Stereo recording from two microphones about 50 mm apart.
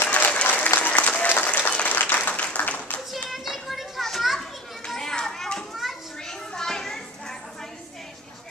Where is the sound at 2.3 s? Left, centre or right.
Left.